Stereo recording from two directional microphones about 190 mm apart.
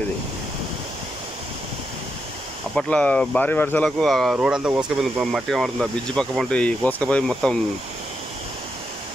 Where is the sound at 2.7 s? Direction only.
5° left (ahead or behind).